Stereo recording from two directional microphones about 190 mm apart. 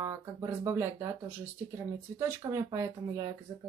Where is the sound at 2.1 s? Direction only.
15° right (ahead or behind).